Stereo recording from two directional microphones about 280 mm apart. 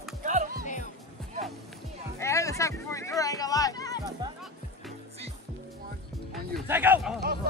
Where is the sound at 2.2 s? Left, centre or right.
Centre.